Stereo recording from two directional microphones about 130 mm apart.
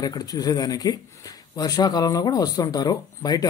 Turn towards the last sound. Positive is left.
turn(degrees=30)  # may be behind; listen again after turning